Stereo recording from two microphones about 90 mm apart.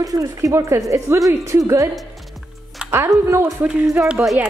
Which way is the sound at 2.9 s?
30° right (ahead or behind).